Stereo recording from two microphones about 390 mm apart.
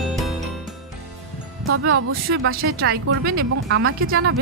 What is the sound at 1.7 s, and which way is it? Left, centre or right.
Speech, right.